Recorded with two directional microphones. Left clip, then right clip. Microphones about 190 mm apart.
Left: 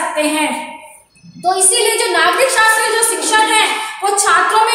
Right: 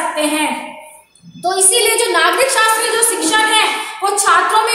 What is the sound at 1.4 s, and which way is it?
A woman's voice, 10° right (ahead or behind).